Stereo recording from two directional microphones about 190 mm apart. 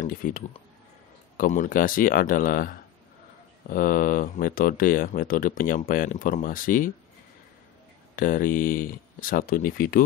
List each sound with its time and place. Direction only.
0.0 s speech: 45° left (ahead or behind)
8.2 s speech: 45° left (ahead or behind)